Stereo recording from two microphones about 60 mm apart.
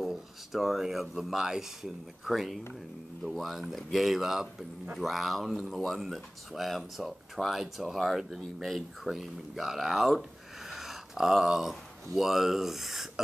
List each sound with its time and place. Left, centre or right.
0.0 s speech: centre
10.7 s a sound: centre
12.2 s speech: centre